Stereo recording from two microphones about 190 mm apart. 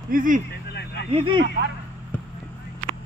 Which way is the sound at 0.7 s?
60° left (ahead or behind).